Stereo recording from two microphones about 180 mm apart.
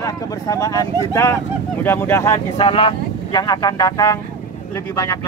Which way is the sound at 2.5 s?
30° left (ahead or behind).